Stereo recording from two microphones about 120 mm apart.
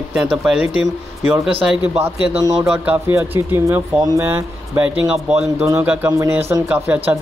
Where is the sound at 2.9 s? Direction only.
20° right (ahead or behind).